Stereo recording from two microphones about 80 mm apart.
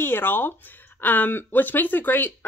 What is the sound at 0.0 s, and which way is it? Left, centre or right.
Speech, left.